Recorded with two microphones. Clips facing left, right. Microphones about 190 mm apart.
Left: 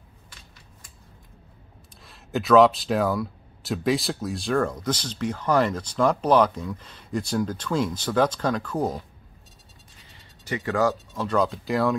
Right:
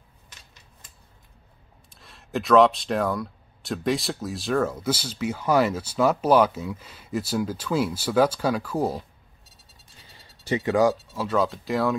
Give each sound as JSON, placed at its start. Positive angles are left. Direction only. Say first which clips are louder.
{"t": 2.0, "sound": "speech", "louder": "left 1 dB", "side_deg": 0}
{"t": 10.4, "sound": "speech", "louder": "right 3 dB", "side_deg": -20}
{"t": 11.2, "sound": "speech", "louder": "left 1 dB", "side_deg": 0}